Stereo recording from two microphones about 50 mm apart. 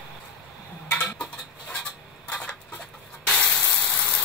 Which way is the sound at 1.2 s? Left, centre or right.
Left.